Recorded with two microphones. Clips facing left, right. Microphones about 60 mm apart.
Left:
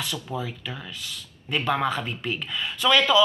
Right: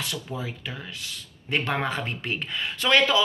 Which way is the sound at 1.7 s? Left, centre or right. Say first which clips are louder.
Left 3 dB; right.